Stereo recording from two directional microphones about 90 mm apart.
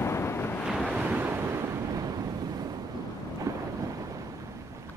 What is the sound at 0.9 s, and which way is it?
Waves, 15° right (ahead or behind).